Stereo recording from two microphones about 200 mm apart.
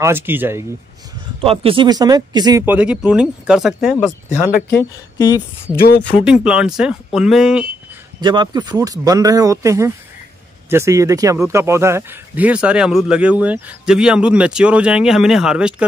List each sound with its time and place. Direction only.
0.0 s speech: 10° right (ahead or behind)
1.4 s speech: 30° right (ahead or behind); by 4.1 s 5° right (ahead or behind)
4.7 s speech: 15° left (ahead or behind)
5.8 s speech: 55° left (ahead or behind)
6.2 s speech: 5° right (ahead or behind)
8.2 s speech: 20° right (ahead or behind); by 15.7 s 5° right (ahead or behind)